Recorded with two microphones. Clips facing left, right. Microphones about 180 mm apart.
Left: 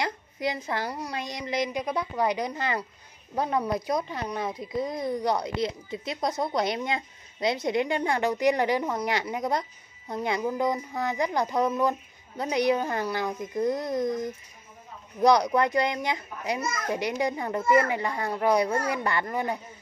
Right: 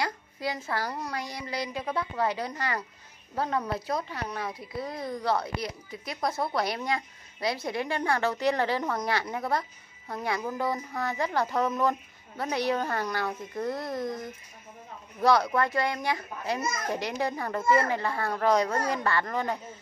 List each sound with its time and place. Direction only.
0.0 s speech: 20° left (ahead or behind)
15.2 s speech: 15° left (ahead or behind)